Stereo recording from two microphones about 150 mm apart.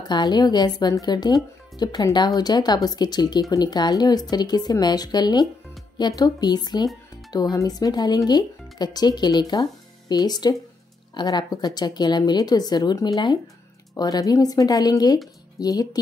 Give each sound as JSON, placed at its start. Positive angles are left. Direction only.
{"t": 0.1, "sound": "speech", "side_deg": 30}